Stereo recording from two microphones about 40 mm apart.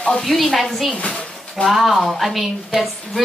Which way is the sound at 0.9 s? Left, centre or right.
Left.